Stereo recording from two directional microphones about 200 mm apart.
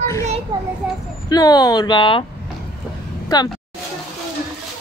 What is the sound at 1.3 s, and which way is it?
Speech, 20° left (ahead or behind).